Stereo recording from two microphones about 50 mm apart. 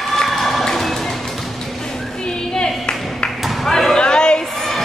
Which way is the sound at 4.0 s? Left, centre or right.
Centre.